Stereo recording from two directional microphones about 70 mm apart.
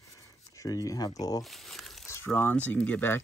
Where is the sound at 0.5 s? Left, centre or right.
Left.